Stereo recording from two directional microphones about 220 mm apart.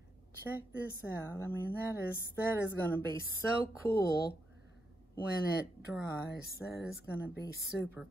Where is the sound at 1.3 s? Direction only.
10° left (ahead or behind).